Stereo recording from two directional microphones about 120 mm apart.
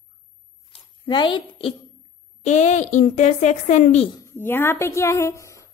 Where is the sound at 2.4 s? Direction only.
75° left (ahead or behind).